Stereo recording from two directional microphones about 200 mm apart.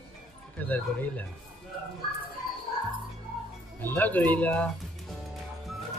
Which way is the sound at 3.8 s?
10° left (ahead or behind).